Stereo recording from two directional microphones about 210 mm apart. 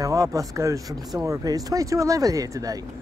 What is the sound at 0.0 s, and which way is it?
Speech, 15° right (ahead or behind).